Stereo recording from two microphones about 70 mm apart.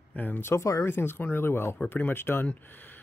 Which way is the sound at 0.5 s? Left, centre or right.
Left.